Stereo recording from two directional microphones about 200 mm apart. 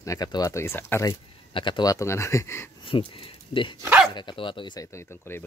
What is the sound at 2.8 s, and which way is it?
Speech, 25° left (ahead or behind).